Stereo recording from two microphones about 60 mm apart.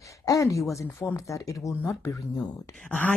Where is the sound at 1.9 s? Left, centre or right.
Left.